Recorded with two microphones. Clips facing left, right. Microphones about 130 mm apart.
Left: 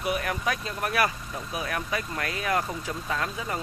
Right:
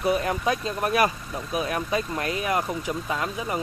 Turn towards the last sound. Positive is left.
turn(degrees=-15)  # may be behind; listen again after turning